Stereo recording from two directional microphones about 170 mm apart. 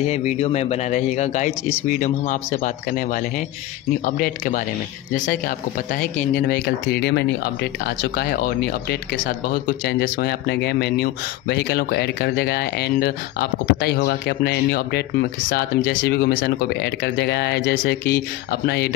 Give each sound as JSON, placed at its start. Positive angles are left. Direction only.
{"t": 0.0, "sound": "speech", "side_deg": 40}
{"t": 4.0, "sound": "speech", "side_deg": 50}
{"t": 7.8, "sound": "speech", "side_deg": 65}